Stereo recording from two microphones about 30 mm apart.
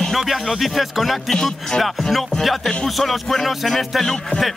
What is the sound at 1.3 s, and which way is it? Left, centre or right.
Speech, left.